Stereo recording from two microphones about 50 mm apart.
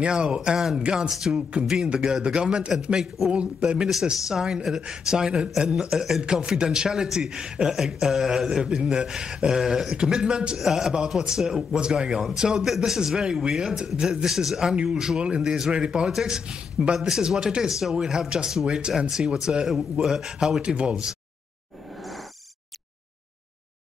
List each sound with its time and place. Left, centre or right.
0.0 s a man's voice: centre
1.7 s a man's voice: centre